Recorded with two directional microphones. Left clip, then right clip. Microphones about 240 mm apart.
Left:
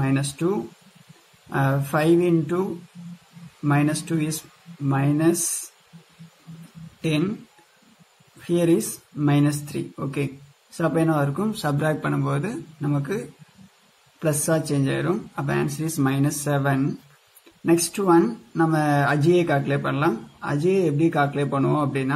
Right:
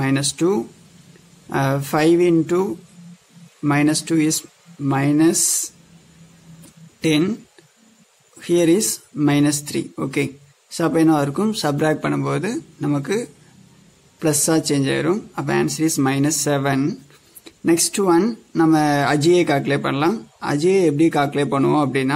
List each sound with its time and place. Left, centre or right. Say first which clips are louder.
0.0 s speech: right 5 dB; right
7.0 s speech: right 6 dB; right
8.5 s speech: right 5 dB; right
14.2 s speech: right 4 dB; right